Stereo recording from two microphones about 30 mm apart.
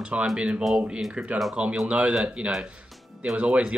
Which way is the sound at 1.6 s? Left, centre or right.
Right.